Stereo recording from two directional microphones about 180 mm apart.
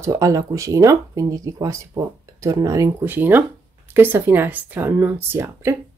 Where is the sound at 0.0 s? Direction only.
15° right (ahead or behind).